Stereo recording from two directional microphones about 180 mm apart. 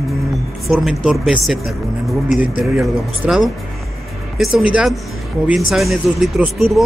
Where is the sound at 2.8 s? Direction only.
Centre (ahead or behind).